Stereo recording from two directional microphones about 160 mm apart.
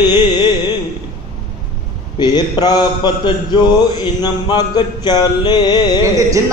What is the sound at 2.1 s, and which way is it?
A man's voice, 25° left (ahead or behind).